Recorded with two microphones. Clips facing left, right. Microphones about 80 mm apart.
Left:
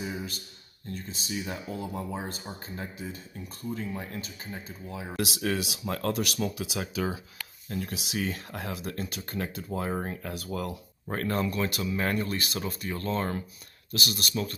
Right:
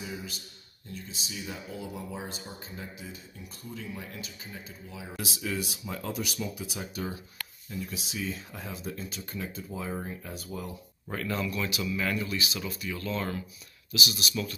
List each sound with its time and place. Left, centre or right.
0.0 s speech: left
5.1 s speech: left
7.7 s speech: left
11.1 s speech: left